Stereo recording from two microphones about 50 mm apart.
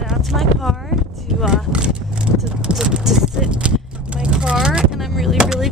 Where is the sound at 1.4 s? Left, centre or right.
Right.